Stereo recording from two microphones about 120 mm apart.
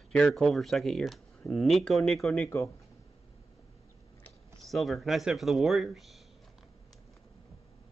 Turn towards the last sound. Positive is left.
turn(degrees=0)  # may be behind; listen again after turning